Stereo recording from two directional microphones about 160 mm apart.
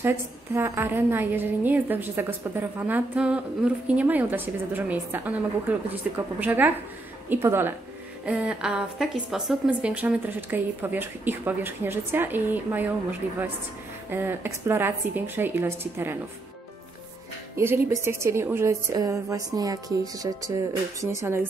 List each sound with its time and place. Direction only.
0.0 s a woman's voice: 15° right (ahead or behind)
14.1 s a woman's voice: 15° right (ahead or behind)
17.6 s a woman's voice: 15° right (ahead or behind)